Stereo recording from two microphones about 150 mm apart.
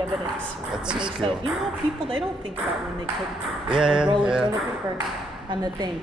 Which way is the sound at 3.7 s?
5° right (ahead or behind).